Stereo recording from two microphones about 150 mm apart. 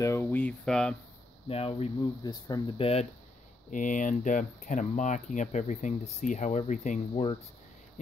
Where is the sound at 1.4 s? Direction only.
40° left (ahead or behind).